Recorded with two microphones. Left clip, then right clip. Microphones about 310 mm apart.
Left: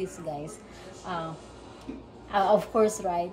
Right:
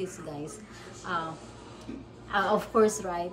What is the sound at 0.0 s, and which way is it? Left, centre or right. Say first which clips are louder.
Speech: left 3 dB; centre.